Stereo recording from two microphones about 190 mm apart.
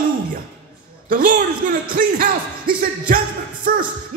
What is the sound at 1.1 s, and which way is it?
Speech, 45° right (ahead or behind).